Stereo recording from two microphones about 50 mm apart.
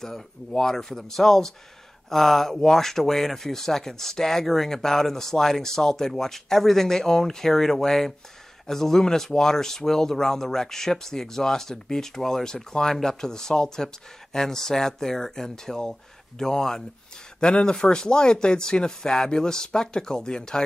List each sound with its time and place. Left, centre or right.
0.0 s speech: centre